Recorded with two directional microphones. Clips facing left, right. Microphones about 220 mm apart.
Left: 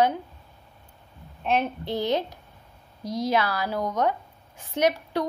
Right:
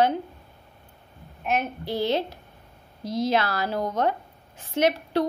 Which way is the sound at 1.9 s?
15° left (ahead or behind).